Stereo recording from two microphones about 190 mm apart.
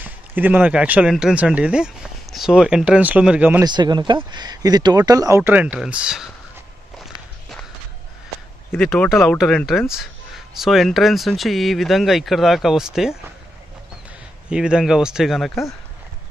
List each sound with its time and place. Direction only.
0.0 s speech: 10° right (ahead or behind)
3.6 s speech: 20° right (ahead or behind); by 6.3 s 5° right (ahead or behind)
8.7 s speech: 5° left (ahead or behind)
14.5 s speech: 5° right (ahead or behind)